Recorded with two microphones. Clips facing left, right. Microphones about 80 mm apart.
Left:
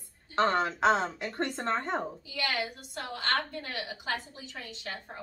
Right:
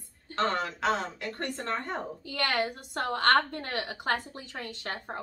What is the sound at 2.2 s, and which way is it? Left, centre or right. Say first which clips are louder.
A woman's voice: right 4 dB; right.